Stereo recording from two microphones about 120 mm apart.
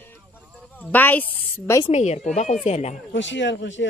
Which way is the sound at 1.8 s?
65° left (ahead or behind).